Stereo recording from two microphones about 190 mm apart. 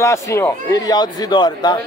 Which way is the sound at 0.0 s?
15° left (ahead or behind).